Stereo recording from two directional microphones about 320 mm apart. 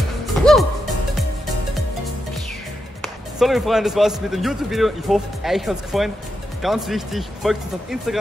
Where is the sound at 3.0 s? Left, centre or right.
Centre.